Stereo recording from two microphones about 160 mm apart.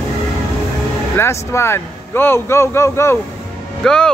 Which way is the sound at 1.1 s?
15° left (ahead or behind).